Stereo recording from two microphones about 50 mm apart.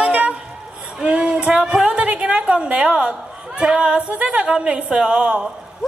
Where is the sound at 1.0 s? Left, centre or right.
Centre.